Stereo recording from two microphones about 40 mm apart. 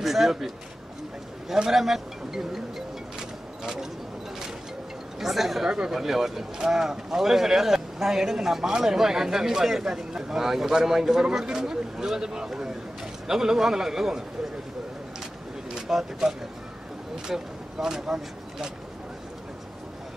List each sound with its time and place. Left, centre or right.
0.0 s a man's voice: centre
1.7 s speech: centre
3.2 s vehicle: centre
5.2 s speech: centre
5.7 s speech: centre
5.9 s speech: centre
15.9 s speech: centre